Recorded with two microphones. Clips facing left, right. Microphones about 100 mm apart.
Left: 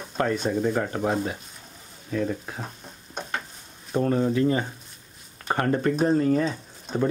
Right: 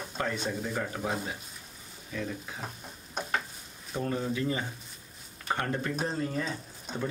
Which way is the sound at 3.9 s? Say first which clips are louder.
Left 9 dB; 50° left (ahead or behind).